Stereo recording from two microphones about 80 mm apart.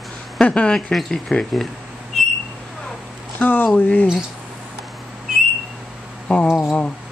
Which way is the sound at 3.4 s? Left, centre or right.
Left.